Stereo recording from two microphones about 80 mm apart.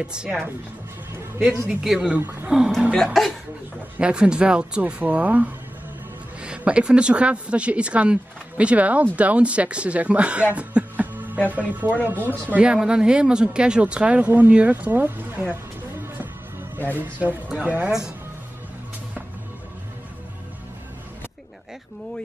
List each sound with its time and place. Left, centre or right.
0.0 s a woman's voice: centre
1.7 s speech: centre
2.0 s speech: centre
2.9 s speech: centre
4.0 s a woman's voice: centre
15.5 s music: right
16.9 s speech: right